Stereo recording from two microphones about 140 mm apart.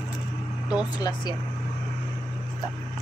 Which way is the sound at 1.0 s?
30° left (ahead or behind).